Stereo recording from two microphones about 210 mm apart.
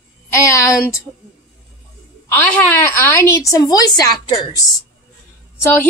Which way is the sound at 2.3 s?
10° left (ahead or behind).